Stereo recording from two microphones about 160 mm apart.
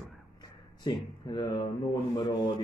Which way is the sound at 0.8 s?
30° left (ahead or behind).